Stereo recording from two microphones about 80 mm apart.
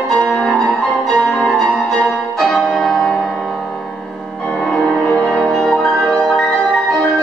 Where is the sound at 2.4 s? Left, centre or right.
Centre.